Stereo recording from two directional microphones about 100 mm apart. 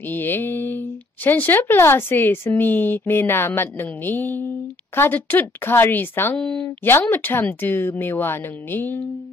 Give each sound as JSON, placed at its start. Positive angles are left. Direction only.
{"t": 0.0, "sound": "speech", "side_deg": 20}